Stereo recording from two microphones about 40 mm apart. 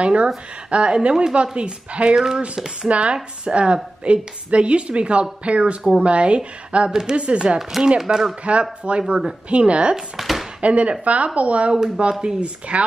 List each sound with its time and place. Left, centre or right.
0.0 s a woman's voice: right
2.1 s speech: centre
2.9 s a woman's voice: right
6.9 s speech: centre
7.2 s a woman's voice: right
7.8 s speech: centre
8.5 s a woman's voice: right
9.9 s speech: centre
10.6 s a woman's voice: right
12.0 s a woman's voice: right